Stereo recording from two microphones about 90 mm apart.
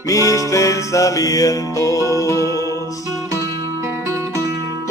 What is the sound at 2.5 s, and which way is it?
Music, 40° right (ahead or behind).